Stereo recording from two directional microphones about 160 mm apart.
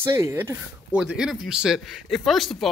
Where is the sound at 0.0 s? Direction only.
15° right (ahead or behind).